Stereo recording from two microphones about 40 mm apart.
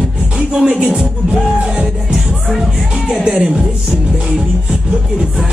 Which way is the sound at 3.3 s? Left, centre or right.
Centre.